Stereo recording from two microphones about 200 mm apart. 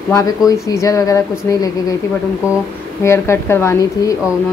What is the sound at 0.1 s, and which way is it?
A woman's voice, 15° left (ahead or behind).